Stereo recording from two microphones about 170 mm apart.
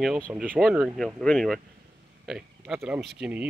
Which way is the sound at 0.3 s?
5° right (ahead or behind).